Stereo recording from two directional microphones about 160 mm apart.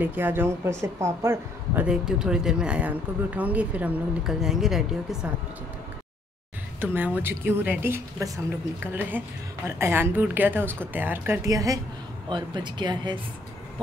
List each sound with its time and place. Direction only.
0.0 s speech: 10° right (ahead or behind)
6.8 s speech: 15° right (ahead or behind)